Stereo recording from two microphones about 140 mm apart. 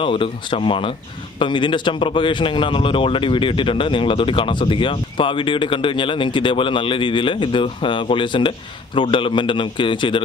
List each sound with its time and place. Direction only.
0.0 s speech: 40° left (ahead or behind)